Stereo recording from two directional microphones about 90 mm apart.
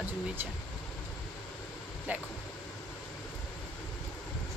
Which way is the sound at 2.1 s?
20° right (ahead or behind).